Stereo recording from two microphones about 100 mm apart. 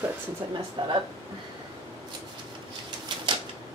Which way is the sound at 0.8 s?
50° right (ahead or behind).